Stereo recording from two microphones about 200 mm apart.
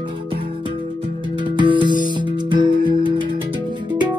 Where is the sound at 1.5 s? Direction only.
25° right (ahead or behind).